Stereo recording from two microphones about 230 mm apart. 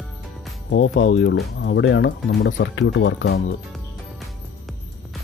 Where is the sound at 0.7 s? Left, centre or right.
Left.